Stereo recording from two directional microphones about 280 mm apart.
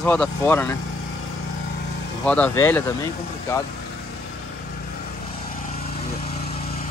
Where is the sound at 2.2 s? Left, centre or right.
Centre.